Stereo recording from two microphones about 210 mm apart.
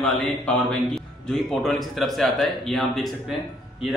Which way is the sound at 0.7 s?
Centre (ahead or behind).